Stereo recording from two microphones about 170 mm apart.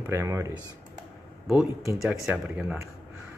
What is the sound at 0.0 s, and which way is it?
Speech, 15° right (ahead or behind).